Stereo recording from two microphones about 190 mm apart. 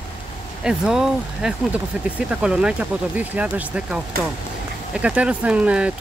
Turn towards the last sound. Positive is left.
turn(degrees=-5)  # may be behind; listen again after turning